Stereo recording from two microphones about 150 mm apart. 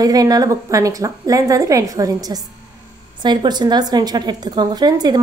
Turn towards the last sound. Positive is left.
turn(degrees=-30)  # may be behind; listen again after turning